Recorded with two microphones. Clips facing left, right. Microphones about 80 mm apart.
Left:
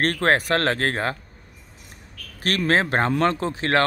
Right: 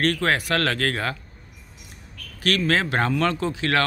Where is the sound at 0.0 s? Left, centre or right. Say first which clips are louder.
Left 2 dB; left.